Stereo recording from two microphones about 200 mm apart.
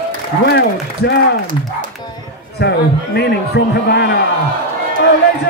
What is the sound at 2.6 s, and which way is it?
A man's voice, 55° left (ahead or behind).